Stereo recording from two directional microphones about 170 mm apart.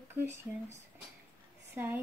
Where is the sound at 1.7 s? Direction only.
15° right (ahead or behind).